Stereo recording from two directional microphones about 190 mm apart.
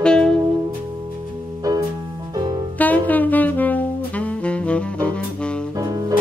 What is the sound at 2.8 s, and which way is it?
Saxophone, 10° left (ahead or behind).